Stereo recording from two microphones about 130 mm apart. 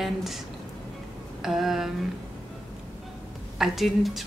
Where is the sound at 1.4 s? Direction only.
Centre (ahead or behind).